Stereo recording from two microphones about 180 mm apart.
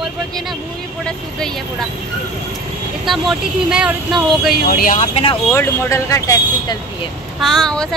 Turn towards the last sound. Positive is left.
turn(degrees=5)  # may be behind; listen again after turning